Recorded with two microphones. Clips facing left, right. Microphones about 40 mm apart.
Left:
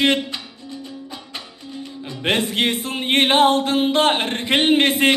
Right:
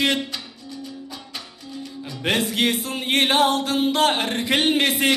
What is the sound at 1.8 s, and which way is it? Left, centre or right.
Music, left.